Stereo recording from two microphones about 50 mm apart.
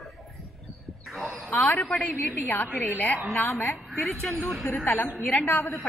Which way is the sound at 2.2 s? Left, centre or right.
Left.